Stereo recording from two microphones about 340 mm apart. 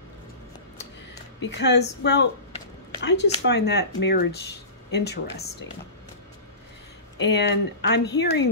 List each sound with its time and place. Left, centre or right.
1.4 s speech: left
7.2 s speech: left